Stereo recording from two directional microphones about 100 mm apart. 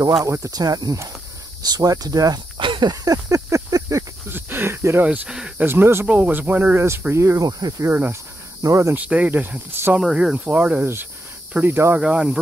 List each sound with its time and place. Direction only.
0.2 s speech: 30° right (ahead or behind)
2.5 s snake: 55° right (ahead or behind)
2.9 s a sound: 35° right (ahead or behind)
4.3 s snake: 20° right (ahead or behind)
5.0 s speech: 15° right (ahead or behind)
5.7 s speech: 25° right (ahead or behind)
7.9 s speech: 20° right (ahead or behind)
8.9 s speech: 15° right (ahead or behind)
10.0 s speech: 10° right (ahead or behind)
12.0 s speech: 10° right (ahead or behind)